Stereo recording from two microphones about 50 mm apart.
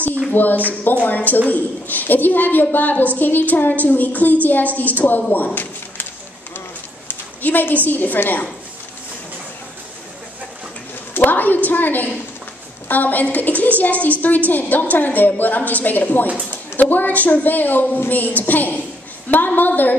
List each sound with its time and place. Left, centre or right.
0.3 s a woman's voice: left
7.1 s a woman's voice: left
11.1 s a sound: left
12.8 s a woman's voice: left